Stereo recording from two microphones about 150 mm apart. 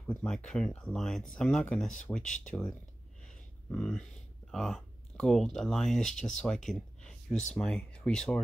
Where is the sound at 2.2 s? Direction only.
55° left (ahead or behind).